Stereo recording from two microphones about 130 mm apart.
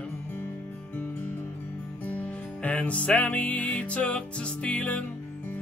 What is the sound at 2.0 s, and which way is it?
Music, 10° left (ahead or behind).